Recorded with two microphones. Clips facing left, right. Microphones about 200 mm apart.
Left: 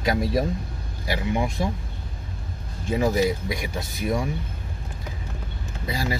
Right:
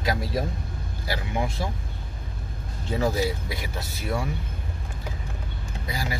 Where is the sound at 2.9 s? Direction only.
15° left (ahead or behind).